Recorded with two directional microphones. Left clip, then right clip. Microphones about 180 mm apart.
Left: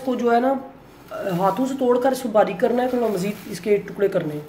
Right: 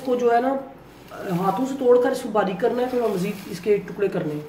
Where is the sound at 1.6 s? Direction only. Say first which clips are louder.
Right 1 dB; 25° left (ahead or behind).